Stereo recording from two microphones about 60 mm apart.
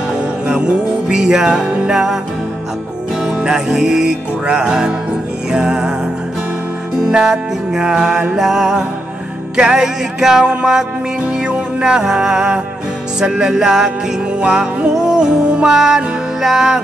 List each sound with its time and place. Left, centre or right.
0.1 s music: centre
3.3 s music: centre
7.1 s music: centre